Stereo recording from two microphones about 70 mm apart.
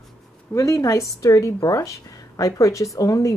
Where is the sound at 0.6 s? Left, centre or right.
Left.